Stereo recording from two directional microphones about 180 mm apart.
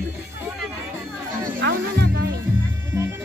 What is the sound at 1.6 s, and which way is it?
Music, 70° right (ahead or behind).